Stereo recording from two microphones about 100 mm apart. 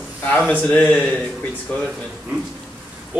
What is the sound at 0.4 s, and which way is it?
A man's voice, 10° left (ahead or behind).